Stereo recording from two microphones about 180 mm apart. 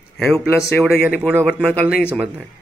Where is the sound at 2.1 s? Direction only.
5° right (ahead or behind).